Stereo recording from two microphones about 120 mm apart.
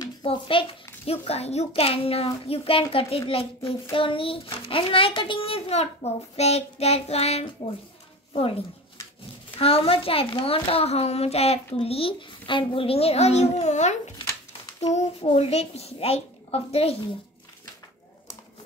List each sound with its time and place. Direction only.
0.2 s a child's voice: 45° left (ahead or behind); by 14.1 s 75° left (ahead or behind)
15.3 s a child's voice: 60° left (ahead or behind)